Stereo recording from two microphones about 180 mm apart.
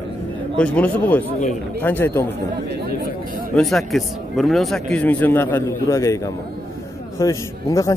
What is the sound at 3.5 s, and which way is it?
Speech, centre (ahead or behind).